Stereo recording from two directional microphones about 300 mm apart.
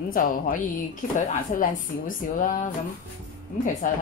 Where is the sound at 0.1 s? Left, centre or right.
Left.